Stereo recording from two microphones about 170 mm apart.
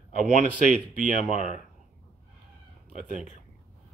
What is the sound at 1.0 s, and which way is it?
Speech, 50° right (ahead or behind).